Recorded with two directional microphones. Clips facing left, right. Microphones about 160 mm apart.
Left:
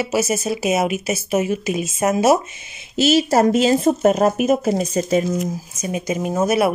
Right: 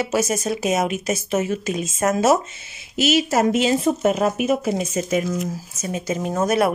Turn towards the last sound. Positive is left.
turn(degrees=10)  # may be behind; listen again after turning